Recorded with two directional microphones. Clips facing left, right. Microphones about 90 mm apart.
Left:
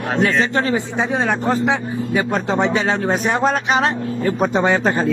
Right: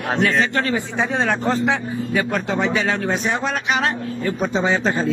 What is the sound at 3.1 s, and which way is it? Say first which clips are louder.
Speech: left 4 dB; 45° left (ahead or behind).